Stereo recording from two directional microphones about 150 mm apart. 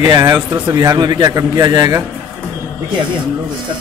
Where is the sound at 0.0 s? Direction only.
20° right (ahead or behind).